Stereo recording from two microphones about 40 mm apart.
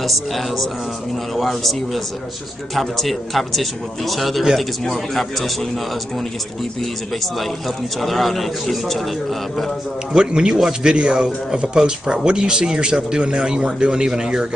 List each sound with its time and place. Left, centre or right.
0.0 s a man's voice: centre
7.3 s a man's voice: centre
10.1 s speech: right